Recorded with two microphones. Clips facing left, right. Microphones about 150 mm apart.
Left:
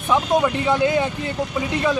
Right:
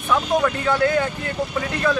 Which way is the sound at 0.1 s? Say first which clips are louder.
Left 1 dB; 20° left (ahead or behind).